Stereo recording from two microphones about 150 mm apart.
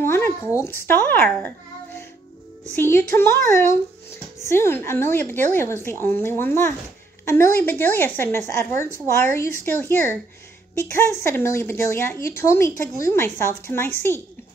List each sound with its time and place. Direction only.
0.0 s a sound: 15° left (ahead or behind)
0.6 s a woman's voice: 15° left (ahead or behind)
2.7 s a woman's voice: 15° left (ahead or behind)
4.5 s a woman's voice: 15° left (ahead or behind)
11.2 s a woman's voice: 15° left (ahead or behind)